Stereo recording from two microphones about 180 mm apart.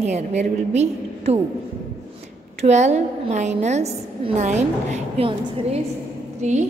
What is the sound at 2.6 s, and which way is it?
A woman's voice, 40° right (ahead or behind).